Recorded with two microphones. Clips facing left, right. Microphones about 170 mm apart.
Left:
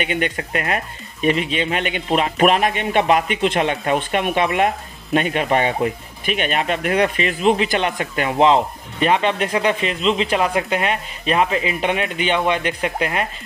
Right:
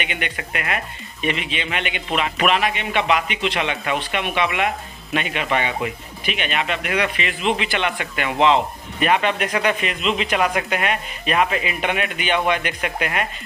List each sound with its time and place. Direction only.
0.0 s speech: 40° left (ahead or behind)